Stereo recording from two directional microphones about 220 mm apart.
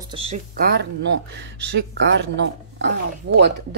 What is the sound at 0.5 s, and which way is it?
Speech, 45° right (ahead or behind).